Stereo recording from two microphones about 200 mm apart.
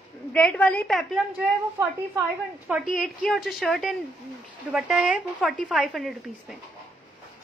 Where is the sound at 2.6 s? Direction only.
5° right (ahead or behind).